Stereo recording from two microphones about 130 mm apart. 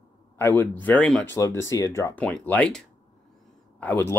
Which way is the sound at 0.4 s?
15° left (ahead or behind).